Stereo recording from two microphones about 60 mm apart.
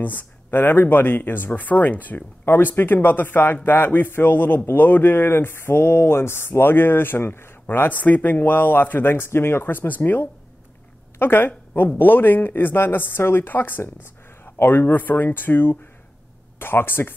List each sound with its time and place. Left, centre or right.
0.0 s speech: left
7.9 s speech: left
13.5 s speech: left